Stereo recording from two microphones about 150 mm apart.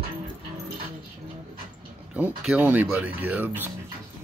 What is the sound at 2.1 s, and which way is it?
Speech, 5° right (ahead or behind).